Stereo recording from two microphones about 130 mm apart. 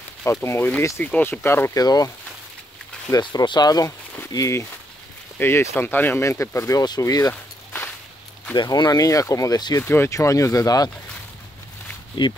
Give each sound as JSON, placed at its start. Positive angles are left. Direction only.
{"t": 0.2, "sound": "speech", "side_deg": 20}
{"t": 8.5, "sound": "speech", "side_deg": 30}
{"t": 9.8, "sound": "speech", "side_deg": 20}
{"t": 12.2, "sound": "speech", "side_deg": 35}